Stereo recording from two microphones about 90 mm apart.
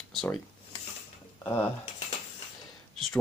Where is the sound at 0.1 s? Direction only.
5° left (ahead or behind).